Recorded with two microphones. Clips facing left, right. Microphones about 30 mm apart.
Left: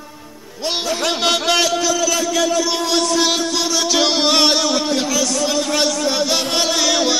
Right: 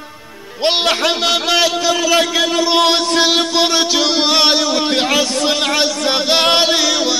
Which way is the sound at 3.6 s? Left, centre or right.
Right.